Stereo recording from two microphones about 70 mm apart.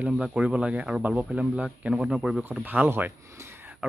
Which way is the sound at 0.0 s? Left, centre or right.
Centre.